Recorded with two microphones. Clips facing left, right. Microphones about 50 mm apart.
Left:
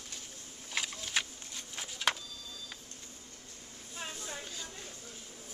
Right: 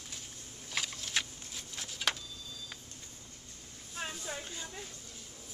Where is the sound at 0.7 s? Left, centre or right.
Centre.